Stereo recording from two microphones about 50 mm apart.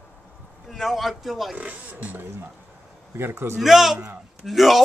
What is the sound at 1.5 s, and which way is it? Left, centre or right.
Speech, right.